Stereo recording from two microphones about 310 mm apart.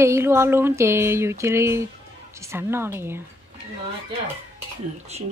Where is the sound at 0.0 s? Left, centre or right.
Centre.